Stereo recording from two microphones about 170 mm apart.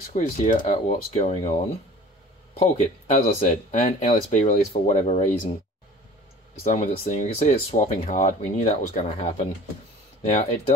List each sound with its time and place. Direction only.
0.1 s speech: 50° left (ahead or behind)
2.6 s speech: 45° left (ahead or behind)
6.8 s speech: 40° left (ahead or behind)